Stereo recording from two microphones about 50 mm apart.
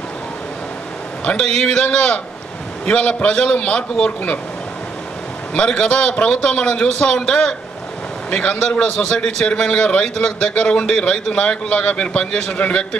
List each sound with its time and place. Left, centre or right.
1.3 s a man's voice: centre
5.5 s a man's voice: centre